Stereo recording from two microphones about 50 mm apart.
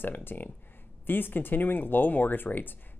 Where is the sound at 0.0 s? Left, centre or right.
Left.